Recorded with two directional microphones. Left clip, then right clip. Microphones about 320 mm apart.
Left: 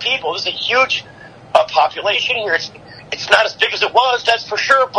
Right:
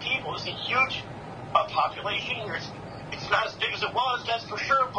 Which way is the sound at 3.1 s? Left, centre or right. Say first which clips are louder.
Left 13 dB; left.